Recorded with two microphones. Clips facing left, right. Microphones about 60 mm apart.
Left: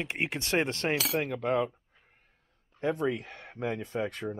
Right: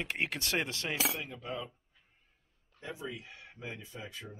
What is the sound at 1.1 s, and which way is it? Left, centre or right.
Speech, left.